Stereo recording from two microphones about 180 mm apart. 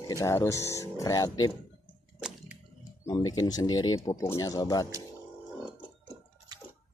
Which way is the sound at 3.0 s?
20° left (ahead or behind).